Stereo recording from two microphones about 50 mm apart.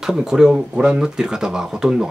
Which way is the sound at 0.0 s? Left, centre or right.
Centre.